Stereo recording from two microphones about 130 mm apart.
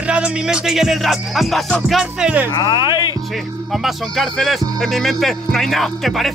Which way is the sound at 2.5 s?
30° left (ahead or behind).